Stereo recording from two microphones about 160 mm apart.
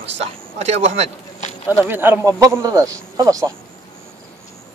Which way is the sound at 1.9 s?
15° right (ahead or behind).